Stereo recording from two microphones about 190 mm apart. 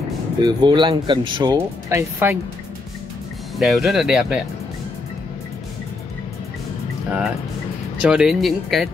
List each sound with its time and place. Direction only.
0.4 s speech: 25° right (ahead or behind)
3.5 s speech: centre (ahead or behind)
8.0 s speech: 5° right (ahead or behind)